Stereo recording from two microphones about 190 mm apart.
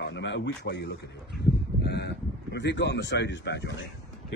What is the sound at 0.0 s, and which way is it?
A man's voice, 70° left (ahead or behind).